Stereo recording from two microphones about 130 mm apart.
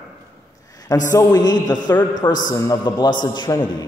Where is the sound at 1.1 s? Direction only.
30° left (ahead or behind).